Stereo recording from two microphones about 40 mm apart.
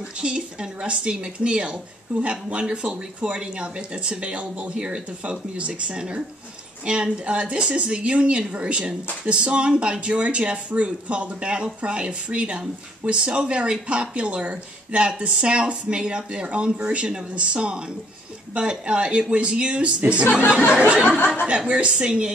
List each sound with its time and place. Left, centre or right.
0.2 s speech: right